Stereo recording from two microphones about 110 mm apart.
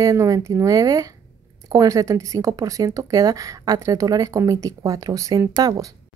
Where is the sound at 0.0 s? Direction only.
30° right (ahead or behind).